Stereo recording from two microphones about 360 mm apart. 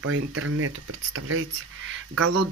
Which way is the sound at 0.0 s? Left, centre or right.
Right.